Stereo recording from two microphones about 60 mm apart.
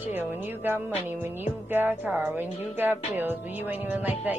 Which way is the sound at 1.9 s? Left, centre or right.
Right.